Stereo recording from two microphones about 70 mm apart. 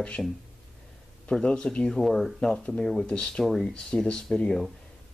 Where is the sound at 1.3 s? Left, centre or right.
Centre.